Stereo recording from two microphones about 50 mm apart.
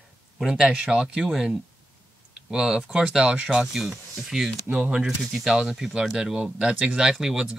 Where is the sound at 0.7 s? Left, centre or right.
Right.